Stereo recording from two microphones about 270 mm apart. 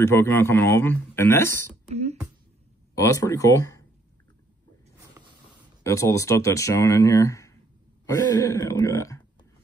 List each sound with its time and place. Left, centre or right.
0.0 s speech: centre
1.9 s beatboxing: right
2.9 s speech: centre
5.2 s a sound: centre
5.9 s speech: centre